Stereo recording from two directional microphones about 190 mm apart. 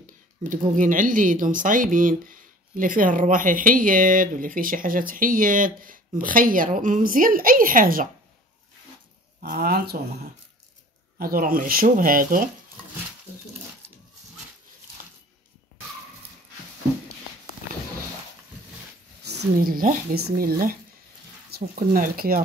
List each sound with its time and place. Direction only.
0.4 s speech: 45° right (ahead or behind)
9.4 s speech: 55° right (ahead or behind)
11.1 s speech: 50° right (ahead or behind)
19.2 s speech: 55° right (ahead or behind)